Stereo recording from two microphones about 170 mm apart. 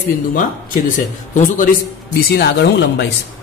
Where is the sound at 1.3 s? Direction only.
50° left (ahead or behind).